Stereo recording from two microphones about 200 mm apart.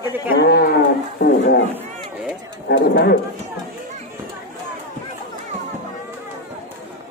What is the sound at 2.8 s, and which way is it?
Speech, 60° left (ahead or behind).